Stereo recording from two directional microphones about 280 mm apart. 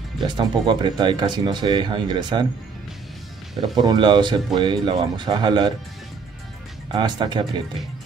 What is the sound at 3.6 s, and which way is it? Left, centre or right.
Speech, centre.